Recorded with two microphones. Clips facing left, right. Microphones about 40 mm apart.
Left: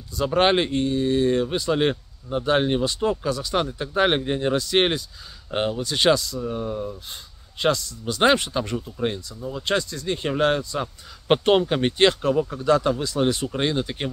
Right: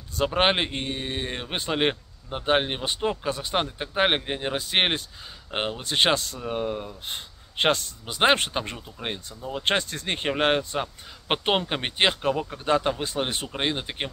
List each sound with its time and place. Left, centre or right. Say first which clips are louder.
0.3 s speech: left 5 dB; right
0.8 s a man's voice: left 10 dB; right
8.0 s speech: left 3 dB; right
11.2 s speech: left 6 dB; centre; by 13.5 s right
13.5 s speech: left 4 dB; right